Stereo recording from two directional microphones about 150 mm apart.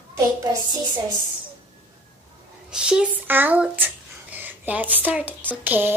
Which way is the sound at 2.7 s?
5° right (ahead or behind).